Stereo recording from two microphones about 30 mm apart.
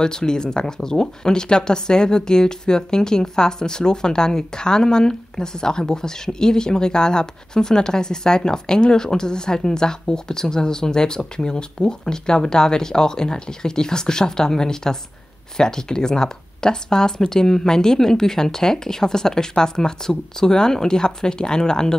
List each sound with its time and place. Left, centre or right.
0.0 s speech: left